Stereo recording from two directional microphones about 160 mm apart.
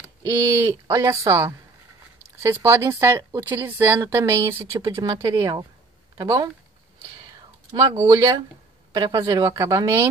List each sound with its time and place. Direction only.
0.3 s speech: 15° right (ahead or behind)
7.2 s a sound: 25° right (ahead or behind)
8.9 s speech: 25° right (ahead or behind)